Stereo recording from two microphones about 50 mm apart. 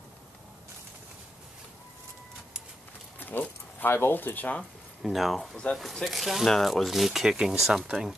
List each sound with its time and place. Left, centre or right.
3.2 s horse: left
3.9 s speech: left
5.0 s speech: centre